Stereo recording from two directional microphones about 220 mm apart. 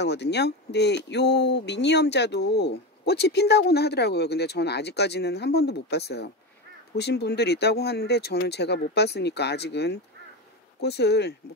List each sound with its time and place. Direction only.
0.0 s speech: 50° left (ahead or behind)